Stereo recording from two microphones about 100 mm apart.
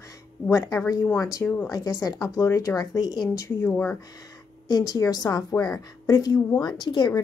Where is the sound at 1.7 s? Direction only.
35° left (ahead or behind).